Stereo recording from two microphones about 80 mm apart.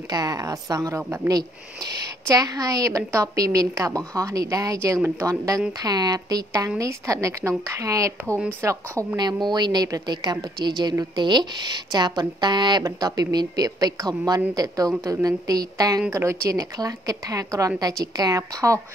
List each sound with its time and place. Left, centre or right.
0.1 s a woman's voice: right
9.1 s a woman's voice: right
12.8 s a woman's voice: right
16.1 s a woman's voice: right